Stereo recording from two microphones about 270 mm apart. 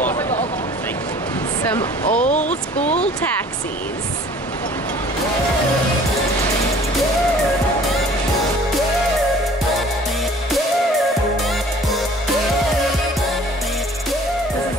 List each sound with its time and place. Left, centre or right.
1.6 s speech: centre
2.2 s speech: left